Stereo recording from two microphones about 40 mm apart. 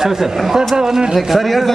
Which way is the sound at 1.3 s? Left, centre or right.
Centre.